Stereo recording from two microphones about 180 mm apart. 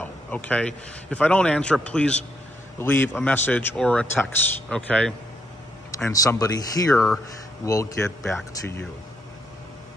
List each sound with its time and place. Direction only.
0.0 s speech: 10° left (ahead or behind)
5.9 s speech: 15° left (ahead or behind)